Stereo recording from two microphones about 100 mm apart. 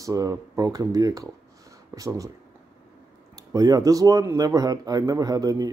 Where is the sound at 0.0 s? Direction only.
35° right (ahead or behind).